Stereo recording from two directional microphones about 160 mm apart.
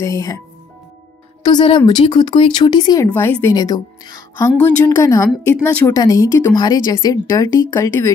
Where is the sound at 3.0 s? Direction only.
10° left (ahead or behind).